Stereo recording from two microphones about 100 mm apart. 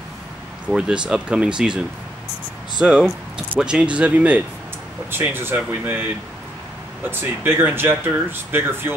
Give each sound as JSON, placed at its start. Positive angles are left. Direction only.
{"t": 0.7, "sound": "speech", "side_deg": -10}
{"t": 7.1, "sound": "speech", "side_deg": -20}